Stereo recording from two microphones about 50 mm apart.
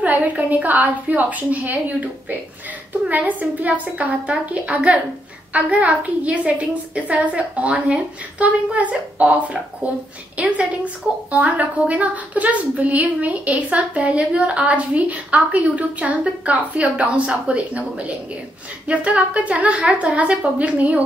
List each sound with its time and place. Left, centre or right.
0.0 s a woman's voice: right